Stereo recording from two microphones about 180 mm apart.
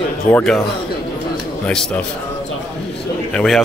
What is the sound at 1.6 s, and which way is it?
Speech, 5° left (ahead or behind).